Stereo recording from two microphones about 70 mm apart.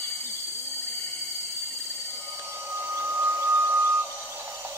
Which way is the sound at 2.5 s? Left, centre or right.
Right.